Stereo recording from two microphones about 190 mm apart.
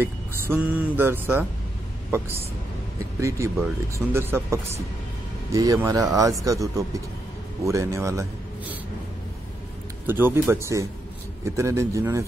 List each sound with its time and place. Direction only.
0.0 s speech: 10° right (ahead or behind)
3.0 s a man's voice: 15° right (ahead or behind)
10.0 s speech: 10° right (ahead or behind)